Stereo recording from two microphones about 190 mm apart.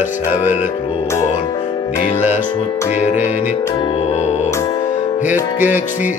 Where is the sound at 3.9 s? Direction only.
35° left (ahead or behind).